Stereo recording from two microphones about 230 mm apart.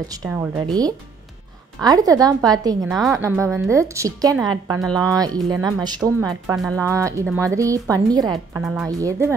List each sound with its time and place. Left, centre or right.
0.1 s a woman's voice: centre
1.8 s a woman's voice: centre
2.9 s speech: centre
3.2 s a woman's voice: centre
8.3 s speech: centre
8.8 s a woman's voice: centre